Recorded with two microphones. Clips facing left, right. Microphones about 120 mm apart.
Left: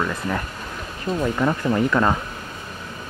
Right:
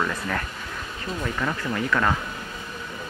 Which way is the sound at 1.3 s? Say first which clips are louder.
Left 6 dB; 30° left (ahead or behind).